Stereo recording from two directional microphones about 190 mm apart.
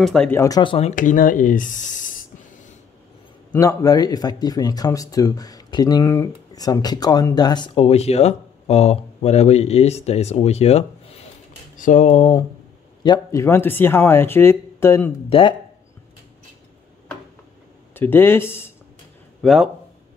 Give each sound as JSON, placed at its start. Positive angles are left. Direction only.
{"t": 0.0, "sound": "speech", "side_deg": 5}
{"t": 3.5, "sound": "speech", "side_deg": 20}
{"t": 15.2, "sound": "speech", "side_deg": 30}
{"t": 17.9, "sound": "speech", "side_deg": 10}
{"t": 19.4, "sound": "speech", "side_deg": 0}